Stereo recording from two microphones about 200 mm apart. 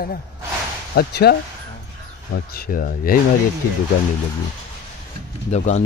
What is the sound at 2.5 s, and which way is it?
Speech, 45° left (ahead or behind).